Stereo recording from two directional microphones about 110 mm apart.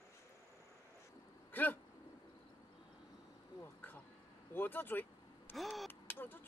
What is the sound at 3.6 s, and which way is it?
Insect, 20° left (ahead or behind).